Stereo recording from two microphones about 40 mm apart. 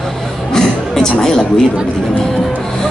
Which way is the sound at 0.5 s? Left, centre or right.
Centre.